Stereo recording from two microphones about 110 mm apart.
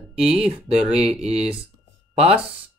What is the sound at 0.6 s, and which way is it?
Speech, 65° right (ahead or behind).